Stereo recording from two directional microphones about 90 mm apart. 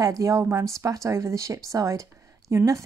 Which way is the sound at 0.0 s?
40° right (ahead or behind).